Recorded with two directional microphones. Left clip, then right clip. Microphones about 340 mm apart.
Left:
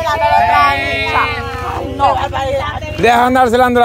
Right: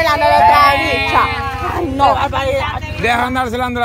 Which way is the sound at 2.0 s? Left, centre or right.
Right.